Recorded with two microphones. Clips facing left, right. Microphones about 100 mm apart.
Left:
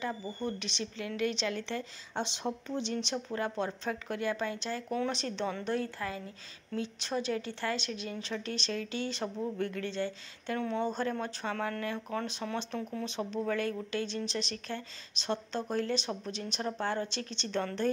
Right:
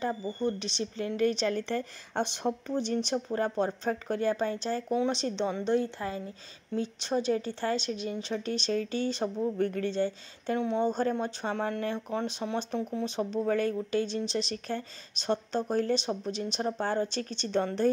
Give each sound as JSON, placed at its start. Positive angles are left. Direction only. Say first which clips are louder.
{"t": 0.0, "sound": "speech", "louder": "right 5 dB", "side_deg": -30}
{"t": 2.7, "sound": "speech", "louder": "right 5 dB", "side_deg": -40}
{"t": 10.6, "sound": "speech", "louder": "right 4 dB", "side_deg": -20}
{"t": 13.0, "sound": "speech", "louder": "right 4 dB", "side_deg": -35}